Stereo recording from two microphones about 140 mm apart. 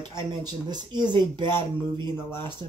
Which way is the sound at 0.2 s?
30° right (ahead or behind).